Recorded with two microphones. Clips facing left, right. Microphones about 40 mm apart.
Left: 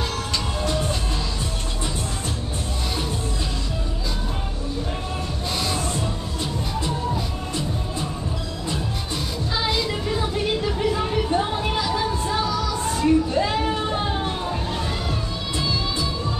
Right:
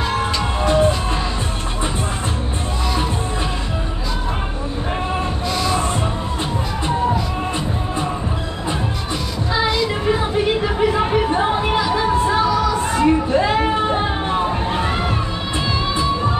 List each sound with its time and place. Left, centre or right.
0.1 s music: right
5.7 s music: right
7.1 s music: right
10.3 s a sound: right
12.4 s music: right
13.0 s a sound: right
16.0 s music: right